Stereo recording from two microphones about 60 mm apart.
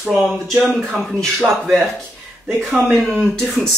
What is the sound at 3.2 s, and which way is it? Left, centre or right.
Speech, centre.